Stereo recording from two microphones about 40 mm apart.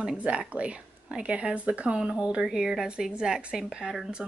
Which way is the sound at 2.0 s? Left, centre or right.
Right.